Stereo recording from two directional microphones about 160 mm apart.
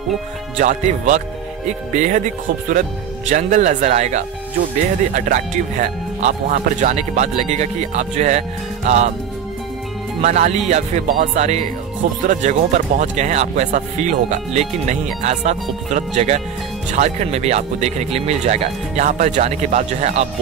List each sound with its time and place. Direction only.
0.6 s speech: 50° right (ahead or behind)
10.2 s speech: 45° right (ahead or behind)